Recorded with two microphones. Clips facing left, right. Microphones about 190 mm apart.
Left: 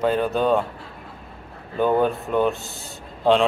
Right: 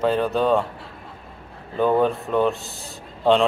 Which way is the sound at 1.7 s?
Centre (ahead or behind).